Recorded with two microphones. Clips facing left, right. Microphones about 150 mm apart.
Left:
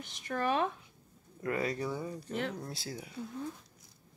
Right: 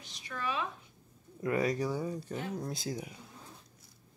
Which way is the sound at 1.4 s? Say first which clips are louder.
Right 3 dB; 15° right (ahead or behind).